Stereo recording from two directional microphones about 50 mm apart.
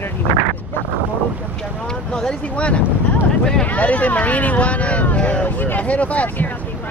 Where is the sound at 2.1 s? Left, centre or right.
Centre.